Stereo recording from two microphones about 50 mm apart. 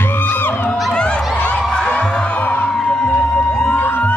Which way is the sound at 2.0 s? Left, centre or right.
Left.